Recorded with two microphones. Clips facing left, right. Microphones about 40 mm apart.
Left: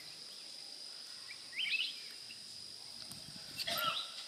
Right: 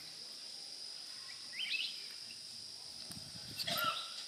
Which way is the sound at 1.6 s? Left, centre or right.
Left.